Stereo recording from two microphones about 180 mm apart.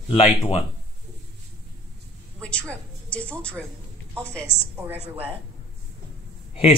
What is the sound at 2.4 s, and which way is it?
A woman's voice, 5° left (ahead or behind).